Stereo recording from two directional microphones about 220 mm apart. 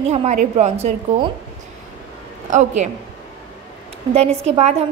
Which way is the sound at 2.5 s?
30° right (ahead or behind).